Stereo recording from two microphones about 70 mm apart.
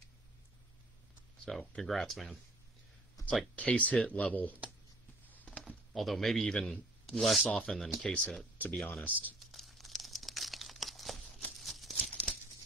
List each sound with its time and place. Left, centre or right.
1.8 s a man's voice: centre
3.5 s speech: centre
5.3 s a sound: left
5.9 s a man's voice: centre
8.7 s a man's voice: centre
9.5 s crumpling: centre
11.5 s a sound: centre
12.0 s tearing: centre